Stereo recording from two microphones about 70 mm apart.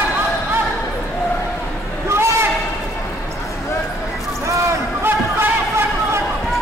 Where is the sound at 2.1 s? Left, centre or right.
Right.